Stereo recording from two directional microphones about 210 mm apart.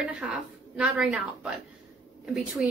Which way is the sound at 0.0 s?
5° right (ahead or behind).